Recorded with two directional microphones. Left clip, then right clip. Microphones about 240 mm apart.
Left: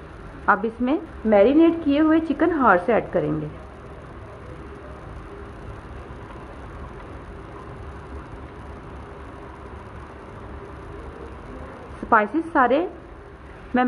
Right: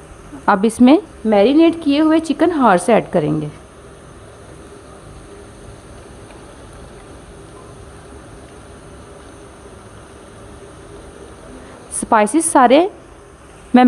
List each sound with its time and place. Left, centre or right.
0.5 s a woman's voice: right
12.1 s a woman's voice: right